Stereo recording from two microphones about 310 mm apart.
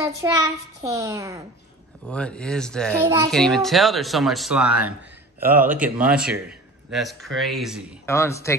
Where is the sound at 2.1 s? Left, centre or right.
Centre.